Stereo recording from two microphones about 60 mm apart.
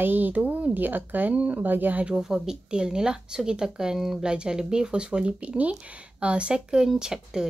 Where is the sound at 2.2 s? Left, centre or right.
Centre.